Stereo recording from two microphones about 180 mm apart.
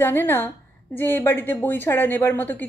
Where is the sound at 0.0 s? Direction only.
10° left (ahead or behind).